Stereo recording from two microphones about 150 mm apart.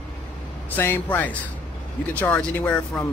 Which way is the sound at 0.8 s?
15° left (ahead or behind).